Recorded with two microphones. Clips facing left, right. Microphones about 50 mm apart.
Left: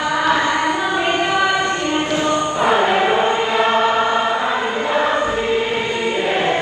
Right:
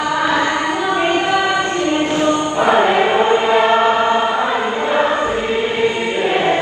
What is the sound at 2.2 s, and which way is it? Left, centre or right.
Music, right.